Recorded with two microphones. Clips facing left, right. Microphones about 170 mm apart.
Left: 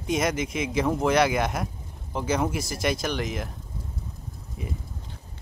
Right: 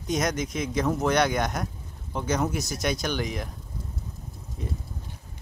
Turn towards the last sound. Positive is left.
turn(degrees=5)  # may be behind; listen again after turning